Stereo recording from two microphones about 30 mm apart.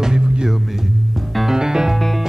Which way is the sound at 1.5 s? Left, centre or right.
Centre.